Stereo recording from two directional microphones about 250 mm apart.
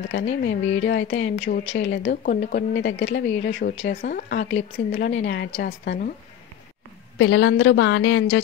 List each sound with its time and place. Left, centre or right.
0.3 s speech: left
2.2 s speech: left
5.6 s speech: left
7.2 s speech: left